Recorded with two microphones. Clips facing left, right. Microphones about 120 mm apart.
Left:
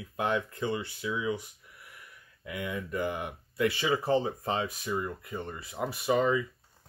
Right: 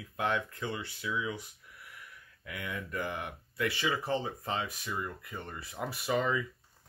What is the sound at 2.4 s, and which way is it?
Speech, 25° left (ahead or behind).